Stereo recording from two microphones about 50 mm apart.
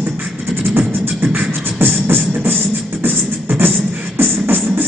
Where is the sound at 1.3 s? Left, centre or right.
Right.